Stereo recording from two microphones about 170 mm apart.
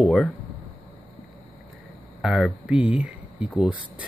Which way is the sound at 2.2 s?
Centre (ahead or behind).